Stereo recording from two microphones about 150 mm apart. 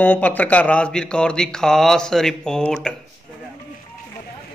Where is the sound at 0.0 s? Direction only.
10° left (ahead or behind).